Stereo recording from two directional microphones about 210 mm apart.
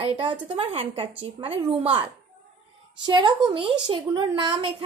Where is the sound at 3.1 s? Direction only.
20° right (ahead or behind).